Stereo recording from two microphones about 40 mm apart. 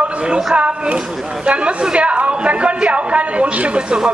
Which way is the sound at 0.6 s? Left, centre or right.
Right.